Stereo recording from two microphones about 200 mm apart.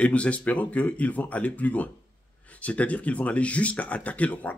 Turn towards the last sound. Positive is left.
turn(degrees=5)  # may be behind; listen again after turning